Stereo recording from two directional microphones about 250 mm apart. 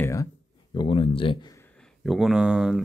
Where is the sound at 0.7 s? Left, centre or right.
Left.